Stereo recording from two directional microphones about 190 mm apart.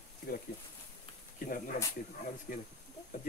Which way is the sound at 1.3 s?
45° left (ahead or behind).